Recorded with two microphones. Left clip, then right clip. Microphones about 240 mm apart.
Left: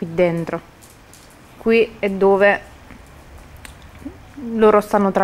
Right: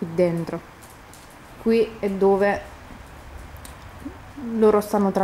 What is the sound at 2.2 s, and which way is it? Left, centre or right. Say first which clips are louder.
Speech: left 5 dB; centre.